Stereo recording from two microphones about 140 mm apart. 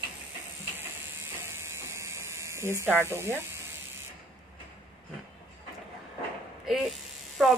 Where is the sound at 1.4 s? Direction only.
20° right (ahead or behind).